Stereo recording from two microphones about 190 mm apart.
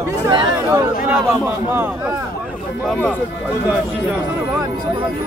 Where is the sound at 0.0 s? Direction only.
20° right (ahead or behind).